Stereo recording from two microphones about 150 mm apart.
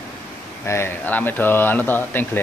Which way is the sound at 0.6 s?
15° left (ahead or behind).